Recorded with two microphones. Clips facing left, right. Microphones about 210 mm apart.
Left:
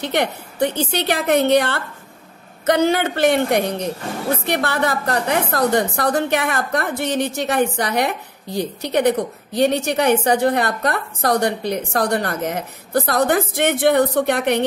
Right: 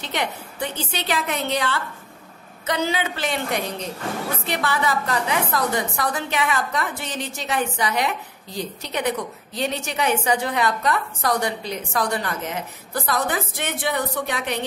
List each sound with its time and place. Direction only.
0.0 s a woman's voice: 60° left (ahead or behind)
12.3 s speech: 40° left (ahead or behind)
12.9 s a woman's voice: 65° left (ahead or behind)